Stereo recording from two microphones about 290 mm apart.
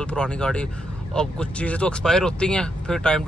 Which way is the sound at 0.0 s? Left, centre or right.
Centre.